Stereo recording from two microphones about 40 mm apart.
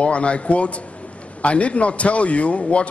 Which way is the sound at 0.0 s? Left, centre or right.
Left.